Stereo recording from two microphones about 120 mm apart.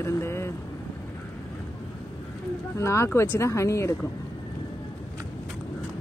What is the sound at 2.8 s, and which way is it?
Speech, 25° left (ahead or behind).